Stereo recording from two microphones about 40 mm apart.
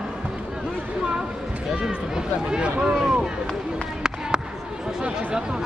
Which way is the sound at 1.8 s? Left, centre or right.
Centre.